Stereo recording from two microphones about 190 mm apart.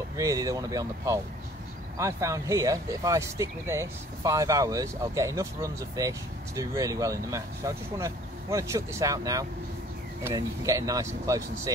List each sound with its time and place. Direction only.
0.2 s speech: 15° right (ahead or behind)